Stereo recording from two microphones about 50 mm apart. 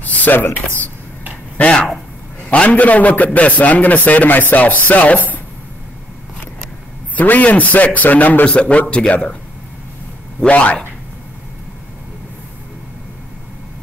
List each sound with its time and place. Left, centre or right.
0.0 s a sound: left
1.6 s a man's voice: left
7.2 s speech: left
8.5 s a man's voice: left
10.5 s a man's voice: left